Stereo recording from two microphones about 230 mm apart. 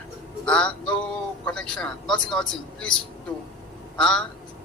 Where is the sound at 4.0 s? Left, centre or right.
Centre.